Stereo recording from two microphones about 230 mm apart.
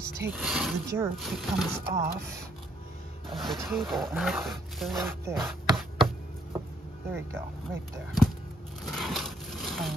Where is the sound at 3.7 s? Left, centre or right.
Centre.